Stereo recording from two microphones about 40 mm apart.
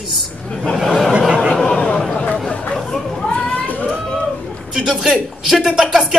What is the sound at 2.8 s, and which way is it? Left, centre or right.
Chatter, centre.